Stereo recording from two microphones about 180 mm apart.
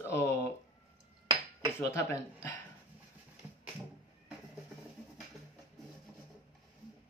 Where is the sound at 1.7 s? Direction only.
15° left (ahead or behind).